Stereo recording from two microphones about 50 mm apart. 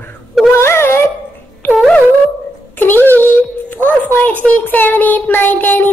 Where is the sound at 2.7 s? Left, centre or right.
Left.